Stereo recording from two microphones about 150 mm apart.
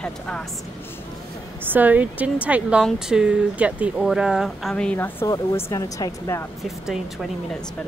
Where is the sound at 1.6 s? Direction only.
10° right (ahead or behind); by 6.5 s 20° left (ahead or behind).